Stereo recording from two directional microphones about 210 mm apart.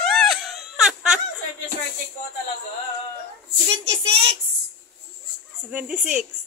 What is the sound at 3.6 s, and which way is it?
Child singing, 30° right (ahead or behind).